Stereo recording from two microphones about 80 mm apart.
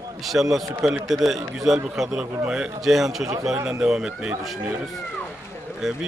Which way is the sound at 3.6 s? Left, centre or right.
Right.